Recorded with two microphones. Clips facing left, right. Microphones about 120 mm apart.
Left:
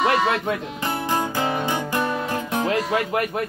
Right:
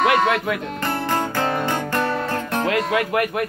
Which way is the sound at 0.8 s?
15° left (ahead or behind).